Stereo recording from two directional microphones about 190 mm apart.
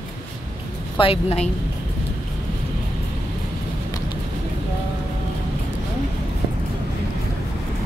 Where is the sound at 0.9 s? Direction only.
30° left (ahead or behind).